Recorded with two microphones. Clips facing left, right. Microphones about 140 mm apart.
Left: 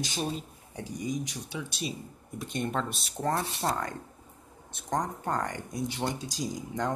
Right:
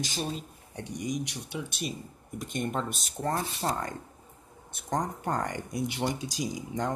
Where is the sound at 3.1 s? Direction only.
Centre (ahead or behind).